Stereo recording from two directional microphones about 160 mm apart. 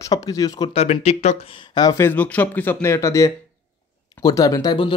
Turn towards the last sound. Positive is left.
turn(degrees=25)  # may be behind; listen again after turning